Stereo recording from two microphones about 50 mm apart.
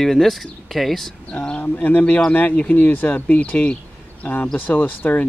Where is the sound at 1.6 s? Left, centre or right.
Left.